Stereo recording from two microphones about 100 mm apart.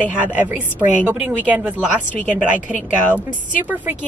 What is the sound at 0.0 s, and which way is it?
A woman's voice, 15° right (ahead or behind).